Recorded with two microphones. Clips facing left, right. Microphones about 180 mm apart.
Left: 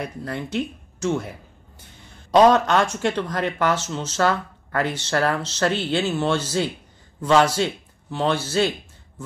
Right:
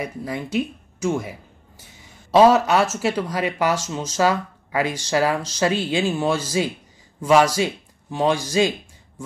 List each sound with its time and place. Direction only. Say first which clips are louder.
0.0 s a man's voice: right 1 dB; 10° right (ahead or behind)